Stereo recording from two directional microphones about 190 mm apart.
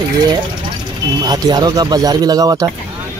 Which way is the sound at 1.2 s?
20° right (ahead or behind).